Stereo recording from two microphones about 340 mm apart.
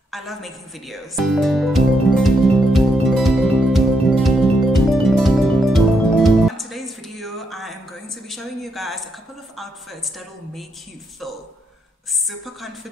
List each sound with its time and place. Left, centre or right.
0.1 s music: centre
9.6 s a woman's voice: centre
12.3 s a woman's voice: centre